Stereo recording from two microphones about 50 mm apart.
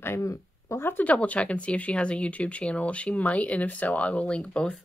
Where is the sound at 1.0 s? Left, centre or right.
Left.